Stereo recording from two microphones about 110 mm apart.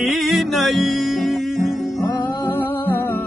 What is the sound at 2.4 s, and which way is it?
Music, 20° left (ahead or behind).